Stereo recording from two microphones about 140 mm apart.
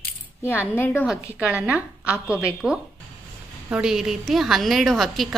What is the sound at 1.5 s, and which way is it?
A woman's voice, 10° right (ahead or behind).